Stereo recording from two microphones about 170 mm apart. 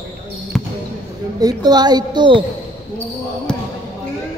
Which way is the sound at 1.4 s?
25° right (ahead or behind).